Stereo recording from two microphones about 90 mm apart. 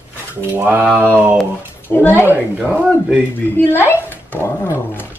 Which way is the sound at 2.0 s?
25° left (ahead or behind).